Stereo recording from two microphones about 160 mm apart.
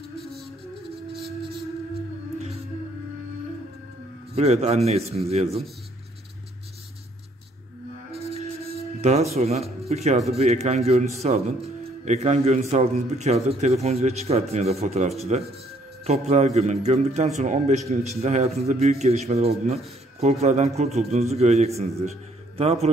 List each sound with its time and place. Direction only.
4.4 s speech: 40° right (ahead or behind)
8.1 s music: 40° right (ahead or behind)
10.3 s a man's voice: 45° right (ahead or behind)